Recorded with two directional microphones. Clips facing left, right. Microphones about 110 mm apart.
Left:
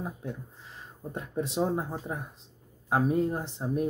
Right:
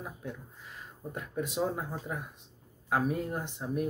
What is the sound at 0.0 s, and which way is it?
Speech, 30° left (ahead or behind).